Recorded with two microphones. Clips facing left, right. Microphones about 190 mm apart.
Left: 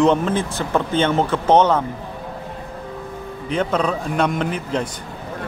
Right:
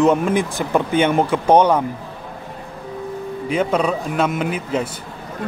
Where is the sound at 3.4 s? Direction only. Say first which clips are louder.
Right 2 dB; 10° right (ahead or behind).